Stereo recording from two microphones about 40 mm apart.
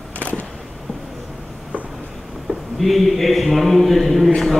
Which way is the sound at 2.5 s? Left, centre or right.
Right.